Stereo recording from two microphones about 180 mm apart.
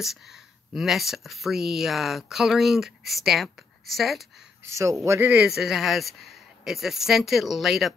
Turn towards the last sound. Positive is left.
turn(degrees=0)  # may be behind; listen again after turning